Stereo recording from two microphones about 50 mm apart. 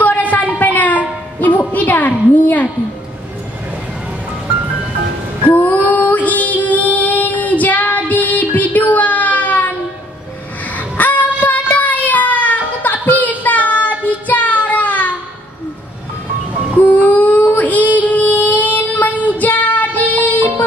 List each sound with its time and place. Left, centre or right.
0.0 s a sound: left
5.5 s female singing: left
11.0 s child singing: left
16.7 s child singing: left